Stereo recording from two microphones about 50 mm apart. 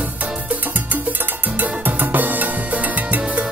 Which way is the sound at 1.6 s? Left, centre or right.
Right.